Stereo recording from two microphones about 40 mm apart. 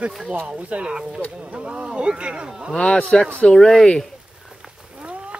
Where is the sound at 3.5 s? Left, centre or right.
Centre.